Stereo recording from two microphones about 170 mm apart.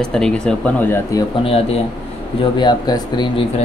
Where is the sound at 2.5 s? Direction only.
25° left (ahead or behind).